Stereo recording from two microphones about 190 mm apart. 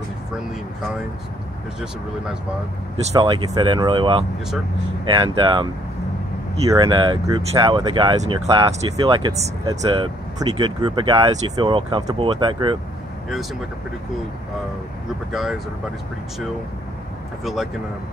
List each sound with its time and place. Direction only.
3.0 s speech: 25° right (ahead or behind)
6.7 s speech: 25° right (ahead or behind)
15.3 s speech: centre (ahead or behind)